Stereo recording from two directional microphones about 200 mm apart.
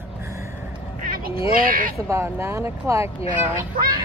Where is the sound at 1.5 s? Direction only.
45° right (ahead or behind).